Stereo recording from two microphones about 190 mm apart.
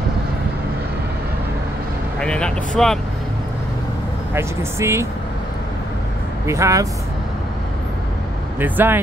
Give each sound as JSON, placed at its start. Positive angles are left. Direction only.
{"t": 2.1, "sound": "speech", "side_deg": 5}
{"t": 4.3, "sound": "speech", "side_deg": -15}
{"t": 6.4, "sound": "speech", "side_deg": -15}
{"t": 8.5, "sound": "speech", "side_deg": -10}